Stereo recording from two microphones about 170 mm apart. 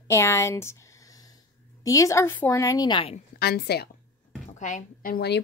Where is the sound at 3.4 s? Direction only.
70° left (ahead or behind).